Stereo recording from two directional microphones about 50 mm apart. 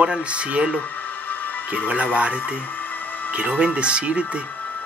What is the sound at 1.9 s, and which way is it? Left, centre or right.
Speech, right.